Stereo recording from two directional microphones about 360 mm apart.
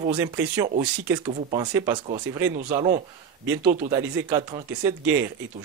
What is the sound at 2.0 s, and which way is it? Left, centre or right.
Speech, centre.